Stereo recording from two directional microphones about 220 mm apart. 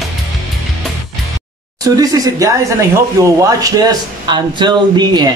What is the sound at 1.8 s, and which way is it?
Speech, 15° right (ahead or behind).